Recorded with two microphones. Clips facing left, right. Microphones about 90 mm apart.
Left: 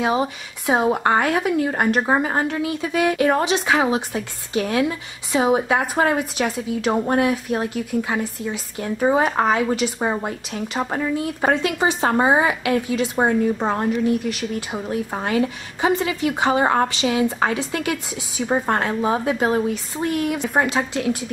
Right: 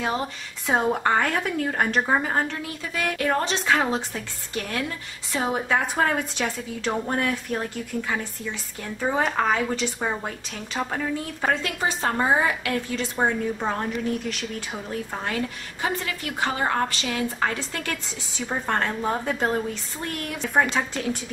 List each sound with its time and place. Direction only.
0.0 s a woman's voice: 10° left (ahead or behind)
9.9 s a woman's voice: 20° left (ahead or behind)
13.2 s speech: 25° left (ahead or behind)
14.0 s speech: 5° left (ahead or behind)
15.1 s a woman's voice: 20° left (ahead or behind)